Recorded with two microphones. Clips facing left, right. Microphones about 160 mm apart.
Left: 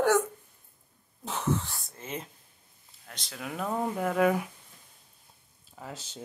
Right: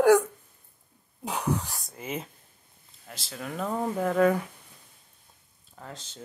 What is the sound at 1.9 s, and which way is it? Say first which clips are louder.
Speech: right 4 dB; 5° right (ahead or behind).